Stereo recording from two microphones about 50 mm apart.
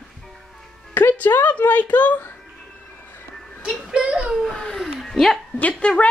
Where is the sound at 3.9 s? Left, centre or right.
Centre.